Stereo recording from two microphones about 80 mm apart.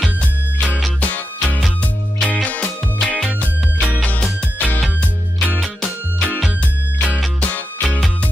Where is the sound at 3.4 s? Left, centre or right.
Centre.